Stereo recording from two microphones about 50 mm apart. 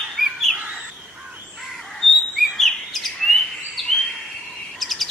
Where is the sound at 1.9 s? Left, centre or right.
Centre.